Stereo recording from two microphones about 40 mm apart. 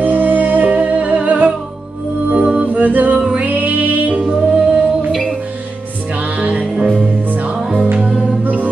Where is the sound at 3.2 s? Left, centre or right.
Centre.